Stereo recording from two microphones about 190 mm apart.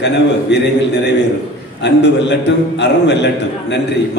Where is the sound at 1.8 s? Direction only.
65° left (ahead or behind).